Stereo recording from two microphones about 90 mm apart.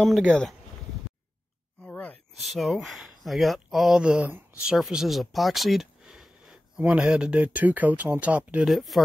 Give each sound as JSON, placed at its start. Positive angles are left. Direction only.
{"t": 0.3, "sound": "speech", "side_deg": 5}
{"t": 1.9, "sound": "a sound", "side_deg": 15}
{"t": 2.3, "sound": "speech", "side_deg": 0}
{"t": 8.6, "sound": "speech", "side_deg": 0}